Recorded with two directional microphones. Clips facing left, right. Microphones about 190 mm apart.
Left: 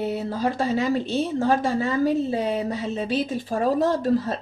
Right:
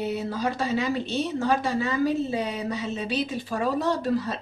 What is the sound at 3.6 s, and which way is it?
Speech, 40° left (ahead or behind).